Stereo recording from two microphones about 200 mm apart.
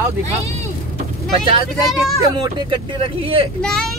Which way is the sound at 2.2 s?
20° right (ahead or behind).